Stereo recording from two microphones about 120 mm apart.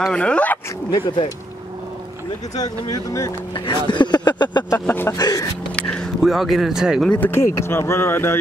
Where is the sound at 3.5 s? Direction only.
40° left (ahead or behind).